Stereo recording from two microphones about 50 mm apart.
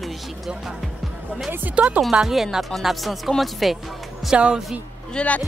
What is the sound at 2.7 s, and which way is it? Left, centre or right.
Music, centre.